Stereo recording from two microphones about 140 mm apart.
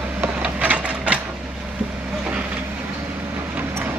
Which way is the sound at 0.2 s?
10° right (ahead or behind).